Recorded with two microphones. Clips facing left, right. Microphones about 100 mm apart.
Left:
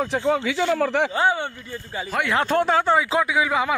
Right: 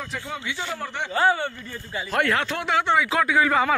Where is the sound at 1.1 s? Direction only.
20° left (ahead or behind).